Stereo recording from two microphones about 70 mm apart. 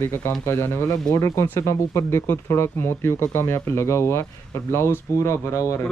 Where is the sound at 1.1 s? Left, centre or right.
Left.